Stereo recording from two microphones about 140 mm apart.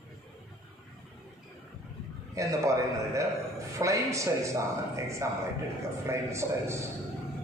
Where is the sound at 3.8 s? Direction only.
20° right (ahead or behind).